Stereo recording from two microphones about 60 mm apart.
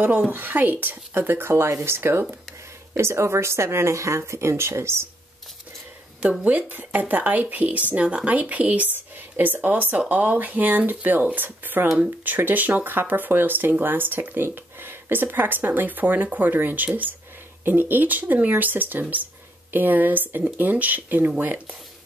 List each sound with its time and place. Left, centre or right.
0.3 s speech: right
6.4 s speech: right